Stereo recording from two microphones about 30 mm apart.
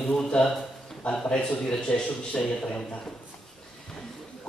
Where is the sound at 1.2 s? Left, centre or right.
Left.